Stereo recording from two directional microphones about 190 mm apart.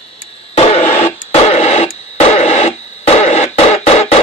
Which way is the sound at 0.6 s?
35° left (ahead or behind).